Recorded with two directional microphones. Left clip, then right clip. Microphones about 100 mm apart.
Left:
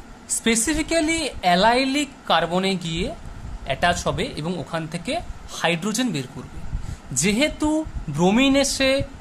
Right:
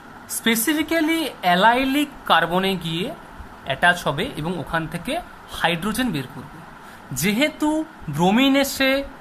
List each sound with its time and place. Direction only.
0.4 s speech: 15° left (ahead or behind)